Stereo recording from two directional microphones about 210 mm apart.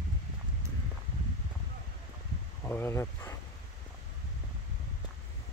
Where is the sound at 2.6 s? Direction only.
10° left (ahead or behind).